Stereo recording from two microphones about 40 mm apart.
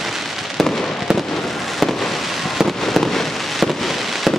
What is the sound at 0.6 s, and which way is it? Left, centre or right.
Fireworks, centre.